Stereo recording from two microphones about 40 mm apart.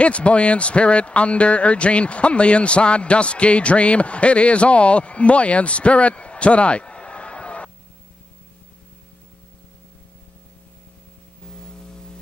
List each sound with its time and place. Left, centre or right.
0.0 s speech: left